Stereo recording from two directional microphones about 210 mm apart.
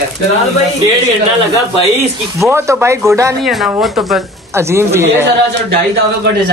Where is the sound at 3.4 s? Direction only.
Centre (ahead or behind).